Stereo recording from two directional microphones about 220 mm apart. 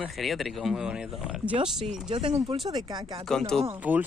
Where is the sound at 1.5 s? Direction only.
20° right (ahead or behind).